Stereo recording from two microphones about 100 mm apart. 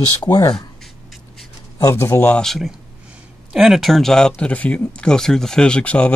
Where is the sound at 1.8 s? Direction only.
30° left (ahead or behind).